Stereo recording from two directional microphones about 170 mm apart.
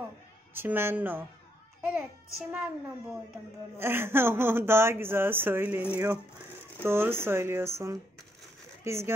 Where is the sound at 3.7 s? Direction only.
15° right (ahead or behind).